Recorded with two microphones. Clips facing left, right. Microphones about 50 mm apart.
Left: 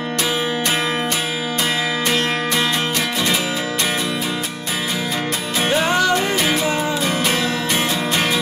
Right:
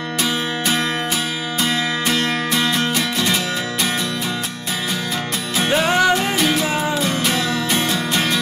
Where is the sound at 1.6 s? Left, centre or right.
Centre.